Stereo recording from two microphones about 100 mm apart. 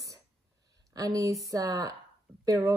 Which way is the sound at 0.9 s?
35° right (ahead or behind).